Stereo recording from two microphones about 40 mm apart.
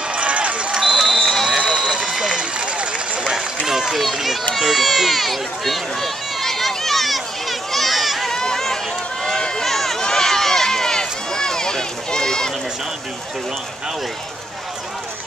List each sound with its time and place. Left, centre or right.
0.1 s run: right
0.7 s run: centre
0.9 s run: centre
1.8 s a sound: centre
2.6 s run: right
3.6 s a sound: centre
4.6 s run: centre
8.3 s run: centre